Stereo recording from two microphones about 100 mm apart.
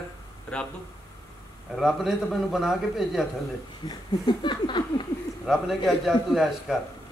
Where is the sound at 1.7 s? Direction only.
Centre (ahead or behind).